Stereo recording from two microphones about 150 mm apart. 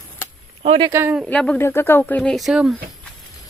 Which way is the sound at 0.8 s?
15° right (ahead or behind).